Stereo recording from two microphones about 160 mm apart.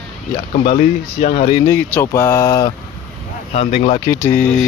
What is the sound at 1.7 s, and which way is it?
Speech, 15° left (ahead or behind).